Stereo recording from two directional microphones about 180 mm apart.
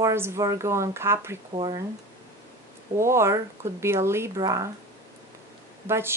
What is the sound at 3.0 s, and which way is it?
A woman's voice, 15° right (ahead or behind).